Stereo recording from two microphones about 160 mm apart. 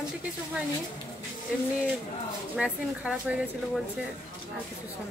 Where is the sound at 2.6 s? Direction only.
5° right (ahead or behind).